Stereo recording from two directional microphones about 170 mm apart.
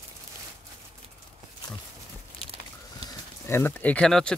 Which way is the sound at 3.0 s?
35° right (ahead or behind).